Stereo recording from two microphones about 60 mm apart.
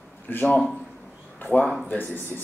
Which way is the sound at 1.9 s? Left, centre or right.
Left.